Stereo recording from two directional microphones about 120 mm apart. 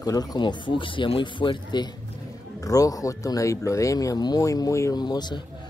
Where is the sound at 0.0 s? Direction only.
35° left (ahead or behind).